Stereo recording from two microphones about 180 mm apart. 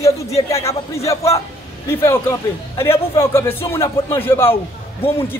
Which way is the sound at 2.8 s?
15° left (ahead or behind).